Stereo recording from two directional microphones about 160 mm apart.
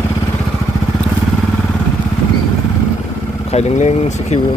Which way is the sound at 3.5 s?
45° left (ahead or behind).